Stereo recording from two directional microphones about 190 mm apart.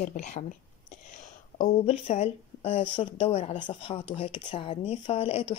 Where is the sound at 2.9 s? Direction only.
30° left (ahead or behind).